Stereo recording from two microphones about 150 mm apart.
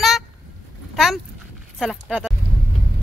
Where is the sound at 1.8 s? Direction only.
5° right (ahead or behind).